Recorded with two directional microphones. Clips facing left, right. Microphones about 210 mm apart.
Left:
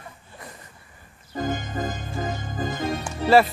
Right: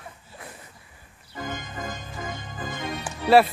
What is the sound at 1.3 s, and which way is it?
Music, 40° left (ahead or behind).